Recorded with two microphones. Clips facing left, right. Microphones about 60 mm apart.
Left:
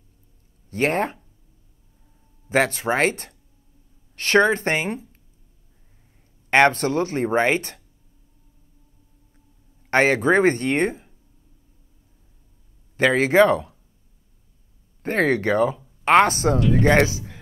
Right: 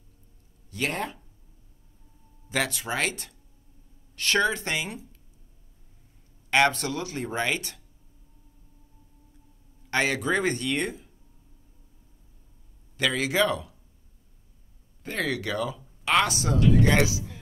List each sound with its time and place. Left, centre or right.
0.7 s speech: left
2.5 s speech: left
6.5 s speech: left
9.8 s speech: left
12.9 s speech: left
15.0 s speech: left